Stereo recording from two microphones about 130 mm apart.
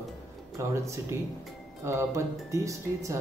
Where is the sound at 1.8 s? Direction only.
20° right (ahead or behind).